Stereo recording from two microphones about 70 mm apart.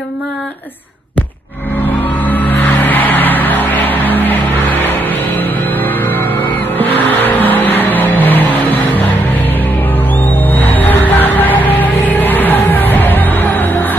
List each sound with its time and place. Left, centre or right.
2.2 s music: left
5.4 s music: left
6.8 s vehicle: left
10.1 s music: left